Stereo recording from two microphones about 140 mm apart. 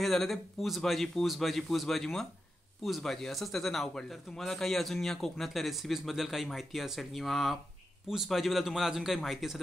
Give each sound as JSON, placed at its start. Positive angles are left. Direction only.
{"t": 0.0, "sound": "speech", "side_deg": 0}